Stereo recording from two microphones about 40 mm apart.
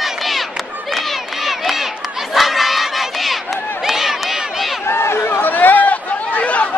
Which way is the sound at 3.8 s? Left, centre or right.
Centre.